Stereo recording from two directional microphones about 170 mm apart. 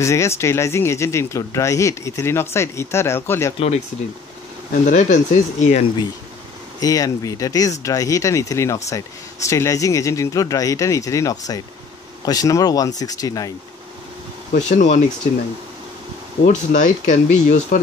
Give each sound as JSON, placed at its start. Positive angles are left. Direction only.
{"t": 0.0, "sound": "speech", "side_deg": 15}
{"t": 3.5, "sound": "speech", "side_deg": 40}
{"t": 4.8, "sound": "speech", "side_deg": 50}
{"t": 6.8, "sound": "speech", "side_deg": 20}
{"t": 14.5, "sound": "speech", "side_deg": 45}
{"t": 16.4, "sound": "speech", "side_deg": 50}